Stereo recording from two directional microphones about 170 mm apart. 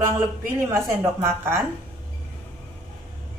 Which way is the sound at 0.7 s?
15° right (ahead or behind).